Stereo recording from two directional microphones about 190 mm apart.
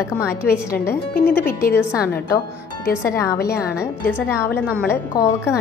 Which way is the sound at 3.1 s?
15° left (ahead or behind).